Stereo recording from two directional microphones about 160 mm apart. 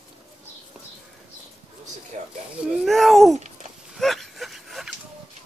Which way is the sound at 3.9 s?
Centre (ahead or behind).